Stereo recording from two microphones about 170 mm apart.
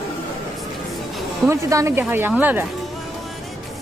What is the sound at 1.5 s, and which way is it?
Speech, 15° right (ahead or behind).